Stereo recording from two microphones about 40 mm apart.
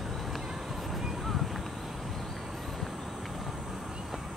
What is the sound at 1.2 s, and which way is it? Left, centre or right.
Boat, centre.